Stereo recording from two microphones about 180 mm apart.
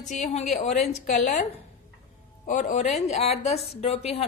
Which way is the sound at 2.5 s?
40° left (ahead or behind).